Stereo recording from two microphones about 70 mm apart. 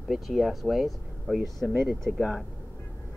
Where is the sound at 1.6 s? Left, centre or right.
Centre.